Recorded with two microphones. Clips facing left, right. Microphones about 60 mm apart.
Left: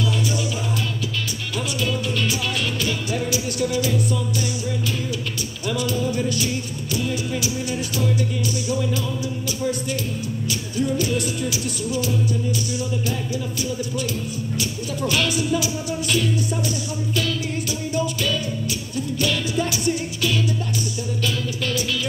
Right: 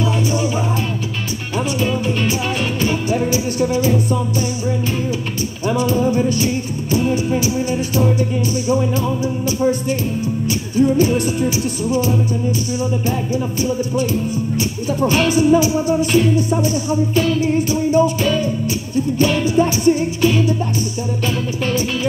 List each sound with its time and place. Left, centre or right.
1.8 s music: right
5.7 s music: right
13.3 s music: right